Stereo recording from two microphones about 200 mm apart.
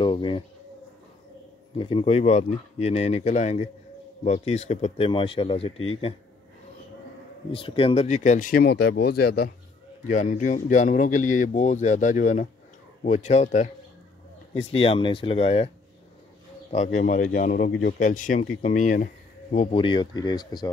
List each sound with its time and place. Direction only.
0.0 s a sound: 25° left (ahead or behind)
1.8 s speech: 25° left (ahead or behind)
7.5 s speech: 25° left (ahead or behind); by 9.5 s 50° left (ahead or behind)
10.0 s speech: 35° left (ahead or behind)
16.7 s speech: 35° left (ahead or behind); by 20.7 s 20° left (ahead or behind)